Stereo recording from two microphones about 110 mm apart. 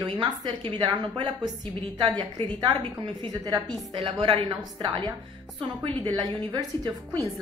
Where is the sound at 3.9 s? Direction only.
55° right (ahead or behind).